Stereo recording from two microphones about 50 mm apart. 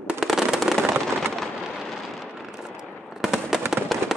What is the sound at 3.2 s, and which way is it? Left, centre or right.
Fireworks, centre.